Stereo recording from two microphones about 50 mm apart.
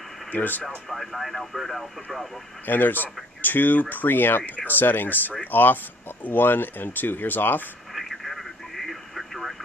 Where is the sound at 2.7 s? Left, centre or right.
Left.